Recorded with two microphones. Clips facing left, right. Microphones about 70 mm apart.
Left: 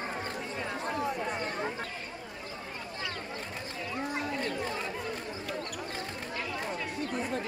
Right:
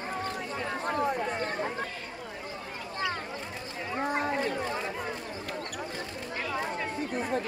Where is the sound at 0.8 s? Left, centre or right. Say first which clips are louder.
Right 4 dB; right.